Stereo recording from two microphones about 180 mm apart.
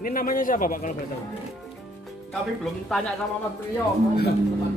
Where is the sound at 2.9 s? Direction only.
5° left (ahead or behind).